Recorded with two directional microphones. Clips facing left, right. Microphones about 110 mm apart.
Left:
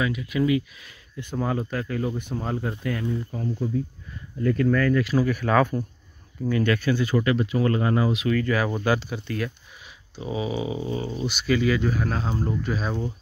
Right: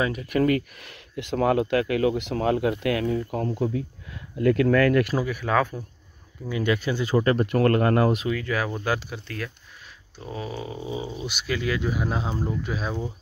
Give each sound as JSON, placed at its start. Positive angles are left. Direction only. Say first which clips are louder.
{"t": 0.0, "sound": "speech", "louder": "right 2 dB", "side_deg": -45}
{"t": 5.2, "sound": "speech", "louder": "left 3 dB", "side_deg": -5}
{"t": 6.4, "sound": "speech", "louder": "left 2 dB", "side_deg": -15}
{"t": 7.4, "sound": "speech", "louder": "right 3 dB", "side_deg": -60}
{"t": 8.3, "sound": "speech", "louder": "left 3 dB", "side_deg": -5}
{"t": 10.9, "sound": "speech", "louder": "left 3 dB", "side_deg": -5}
{"t": 11.9, "sound": "speech", "louder": "left 1 dB", "side_deg": -15}
{"t": 12.4, "sound": "speech", "louder": "left 2 dB", "side_deg": -5}